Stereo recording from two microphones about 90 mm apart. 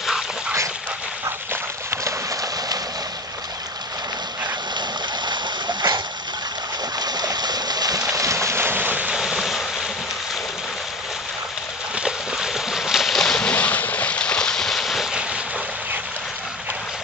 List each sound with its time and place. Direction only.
1.5 s dog: 30° right (ahead or behind)
4.7 s splash: 55° right (ahead or behind)
7.0 s stream: 50° right (ahead or behind)
8.1 s boat: 35° right (ahead or behind); by 9.1 s 20° right (ahead or behind)
9.1 s vehicle: 5° right (ahead or behind)
11.9 s boat: 10° right (ahead or behind)